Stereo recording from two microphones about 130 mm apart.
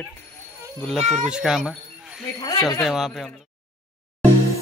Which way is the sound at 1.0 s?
65° right (ahead or behind).